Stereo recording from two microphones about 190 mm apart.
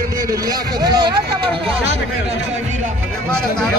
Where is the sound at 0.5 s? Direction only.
20° right (ahead or behind).